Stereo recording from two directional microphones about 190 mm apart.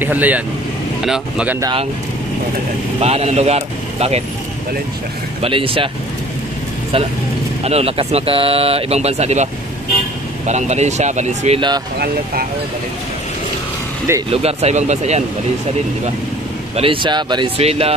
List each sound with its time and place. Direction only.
0.0 s speech: 10° right (ahead or behind)
1.6 s speech: 25° right (ahead or behind)
3.0 s speech: 35° right (ahead or behind)
5.4 s speech: 30° right (ahead or behind)
7.6 s speech: 30° right (ahead or behind)
14.3 s speech: 35° right (ahead or behind)
16.7 s speech: 30° right (ahead or behind)